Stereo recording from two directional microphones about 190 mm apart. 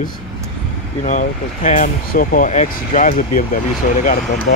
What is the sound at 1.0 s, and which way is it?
Speech, 40° left (ahead or behind).